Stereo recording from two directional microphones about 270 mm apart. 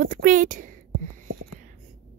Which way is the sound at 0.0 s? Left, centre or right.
Right.